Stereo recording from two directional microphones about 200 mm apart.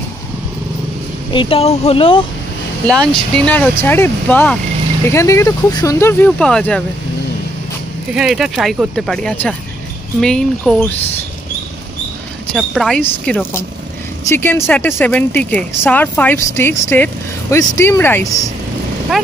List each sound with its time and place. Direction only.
1.3 s speech: 25° left (ahead or behind)
3.1 s a woman's voice: 5° left (ahead or behind)
8.1 s speech: centre (ahead or behind)
12.5 s a woman's voice: centre (ahead or behind)